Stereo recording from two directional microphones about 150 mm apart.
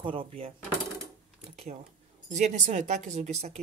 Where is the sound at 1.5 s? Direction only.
45° right (ahead or behind).